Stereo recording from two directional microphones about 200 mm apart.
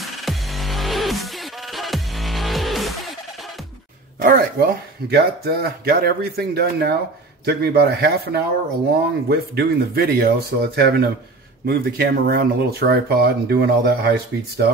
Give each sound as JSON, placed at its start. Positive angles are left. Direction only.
{"t": 0.0, "sound": "music", "side_deg": 0}
{"t": 4.2, "sound": "speech", "side_deg": -50}